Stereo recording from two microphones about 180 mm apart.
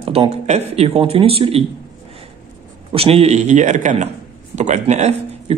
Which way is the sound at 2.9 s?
35° right (ahead or behind).